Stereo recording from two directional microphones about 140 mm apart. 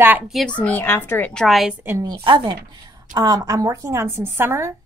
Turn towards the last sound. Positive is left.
turn(degrees=-20)  # may be behind; listen again after turning